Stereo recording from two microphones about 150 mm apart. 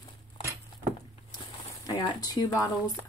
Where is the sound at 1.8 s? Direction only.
25° left (ahead or behind).